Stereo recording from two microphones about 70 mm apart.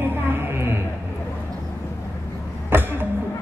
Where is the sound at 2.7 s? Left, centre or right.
Right.